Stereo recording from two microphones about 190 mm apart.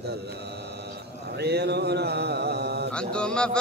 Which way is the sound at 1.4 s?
60° right (ahead or behind).